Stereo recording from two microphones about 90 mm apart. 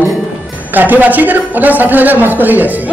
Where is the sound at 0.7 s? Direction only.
20° right (ahead or behind).